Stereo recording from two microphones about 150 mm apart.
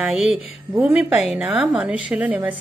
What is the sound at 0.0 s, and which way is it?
A woman's voice, 10° right (ahead or behind).